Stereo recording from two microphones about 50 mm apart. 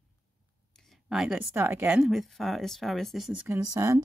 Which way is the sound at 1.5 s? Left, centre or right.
Right.